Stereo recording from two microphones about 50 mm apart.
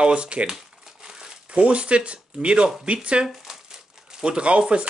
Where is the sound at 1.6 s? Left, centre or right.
Right.